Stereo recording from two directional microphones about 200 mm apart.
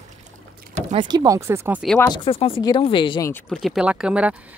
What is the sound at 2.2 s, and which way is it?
Speech, 25° left (ahead or behind).